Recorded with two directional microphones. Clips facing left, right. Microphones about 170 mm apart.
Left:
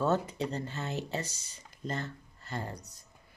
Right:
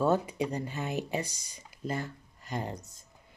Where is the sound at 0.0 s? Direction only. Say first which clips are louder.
Right 2 dB; 10° right (ahead or behind).